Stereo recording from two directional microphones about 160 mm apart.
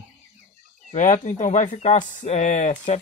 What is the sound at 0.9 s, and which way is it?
Speech, 50° left (ahead or behind).